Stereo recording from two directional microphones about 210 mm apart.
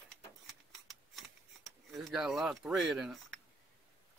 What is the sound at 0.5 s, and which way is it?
Shuffling cards, centre (ahead or behind).